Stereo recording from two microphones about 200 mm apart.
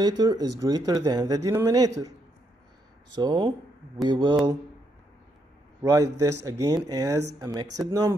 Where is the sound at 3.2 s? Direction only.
20° right (ahead or behind).